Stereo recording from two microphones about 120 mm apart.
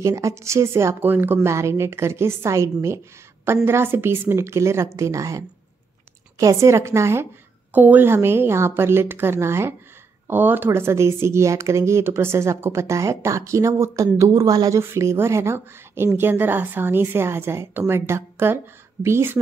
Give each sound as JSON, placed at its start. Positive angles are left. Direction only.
{"t": 0.0, "sound": "speech", "side_deg": -25}